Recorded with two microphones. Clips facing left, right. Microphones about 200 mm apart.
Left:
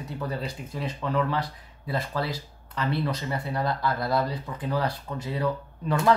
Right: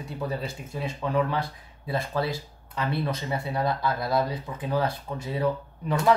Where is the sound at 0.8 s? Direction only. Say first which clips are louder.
Right 1 dB; 10° right (ahead or behind).